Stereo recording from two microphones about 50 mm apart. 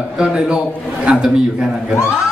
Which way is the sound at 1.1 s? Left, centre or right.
Right.